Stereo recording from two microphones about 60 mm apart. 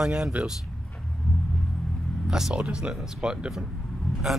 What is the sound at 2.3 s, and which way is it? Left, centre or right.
Speech, centre.